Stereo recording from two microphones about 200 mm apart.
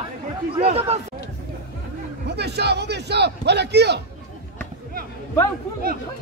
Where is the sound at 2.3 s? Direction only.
55° right (ahead or behind).